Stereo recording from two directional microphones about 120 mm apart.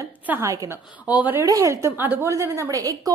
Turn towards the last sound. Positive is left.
turn(degrees=-30)  # may be behind; listen again after turning